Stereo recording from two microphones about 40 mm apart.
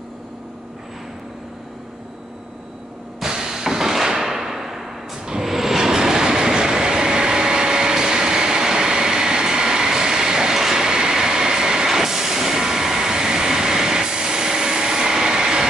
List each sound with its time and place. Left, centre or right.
3.2 s a sound: centre
5.2 s vehicle: centre
5.5 s train: centre